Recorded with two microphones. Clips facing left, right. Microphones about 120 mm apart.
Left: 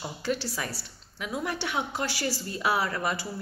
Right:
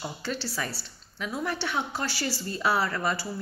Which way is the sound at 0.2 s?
10° left (ahead or behind).